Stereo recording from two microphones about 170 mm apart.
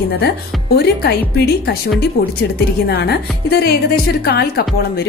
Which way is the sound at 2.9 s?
75° left (ahead or behind).